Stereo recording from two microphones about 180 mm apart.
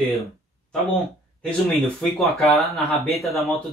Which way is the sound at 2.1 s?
Centre (ahead or behind).